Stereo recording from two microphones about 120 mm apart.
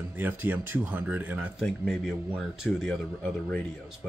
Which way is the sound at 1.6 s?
Centre (ahead or behind).